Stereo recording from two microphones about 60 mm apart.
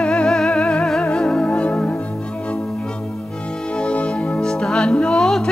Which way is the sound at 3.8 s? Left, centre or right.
Left.